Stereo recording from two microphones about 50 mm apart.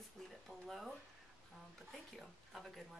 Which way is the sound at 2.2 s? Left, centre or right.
Centre.